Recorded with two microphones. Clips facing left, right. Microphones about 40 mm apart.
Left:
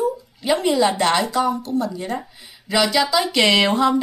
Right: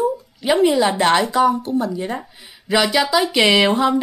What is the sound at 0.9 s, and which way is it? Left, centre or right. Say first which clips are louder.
A woman's voice: right 3 dB; right.